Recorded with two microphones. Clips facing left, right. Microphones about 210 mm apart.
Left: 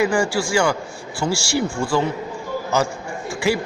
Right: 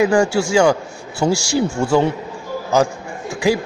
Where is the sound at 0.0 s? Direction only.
20° right (ahead or behind).